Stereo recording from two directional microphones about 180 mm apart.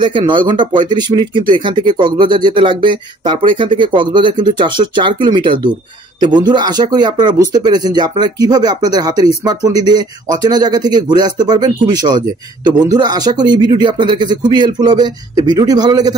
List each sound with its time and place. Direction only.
0.0 s speech: 25° right (ahead or behind)